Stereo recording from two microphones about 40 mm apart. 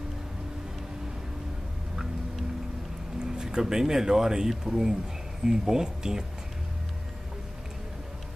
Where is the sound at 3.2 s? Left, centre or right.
Centre.